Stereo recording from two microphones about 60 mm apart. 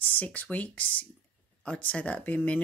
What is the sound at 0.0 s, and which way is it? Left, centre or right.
Speech, left.